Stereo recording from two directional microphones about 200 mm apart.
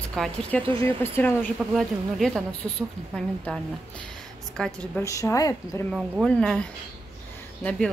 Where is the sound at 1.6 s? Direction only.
Centre (ahead or behind).